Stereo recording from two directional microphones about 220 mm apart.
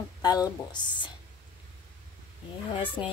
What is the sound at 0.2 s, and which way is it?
Speech, 20° left (ahead or behind).